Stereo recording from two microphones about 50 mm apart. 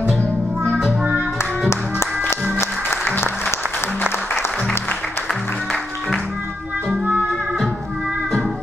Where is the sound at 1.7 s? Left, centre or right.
Left.